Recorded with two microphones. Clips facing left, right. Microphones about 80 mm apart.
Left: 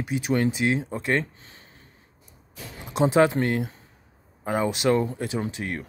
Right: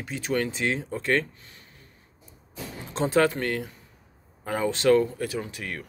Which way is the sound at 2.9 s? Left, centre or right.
Centre.